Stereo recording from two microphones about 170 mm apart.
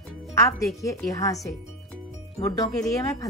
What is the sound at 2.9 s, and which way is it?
Speech, 20° left (ahead or behind).